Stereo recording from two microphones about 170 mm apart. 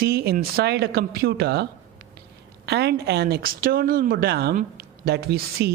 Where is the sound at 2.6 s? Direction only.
75° right (ahead or behind).